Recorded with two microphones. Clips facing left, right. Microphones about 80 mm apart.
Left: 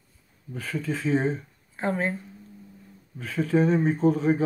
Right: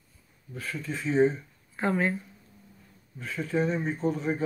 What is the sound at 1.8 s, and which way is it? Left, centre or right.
Speech, left.